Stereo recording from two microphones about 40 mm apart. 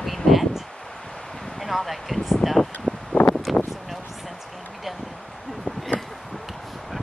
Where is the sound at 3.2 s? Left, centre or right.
Left.